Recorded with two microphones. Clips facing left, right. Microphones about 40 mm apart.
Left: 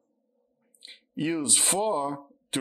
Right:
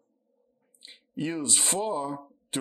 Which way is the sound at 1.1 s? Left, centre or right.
Left.